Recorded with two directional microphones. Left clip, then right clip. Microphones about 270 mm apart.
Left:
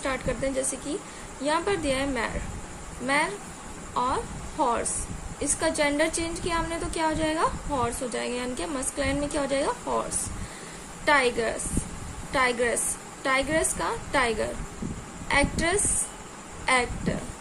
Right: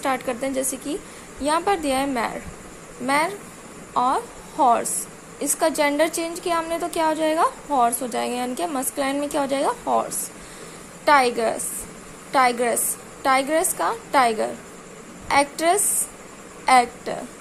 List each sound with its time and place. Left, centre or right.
0.0 s a woman's voice: right
3.9 s a woman's voice: centre